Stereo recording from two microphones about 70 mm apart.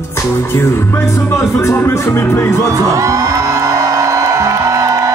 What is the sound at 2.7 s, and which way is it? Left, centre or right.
Music, right.